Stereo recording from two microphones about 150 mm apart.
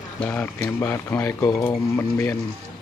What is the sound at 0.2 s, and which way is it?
Speech, 10° left (ahead or behind).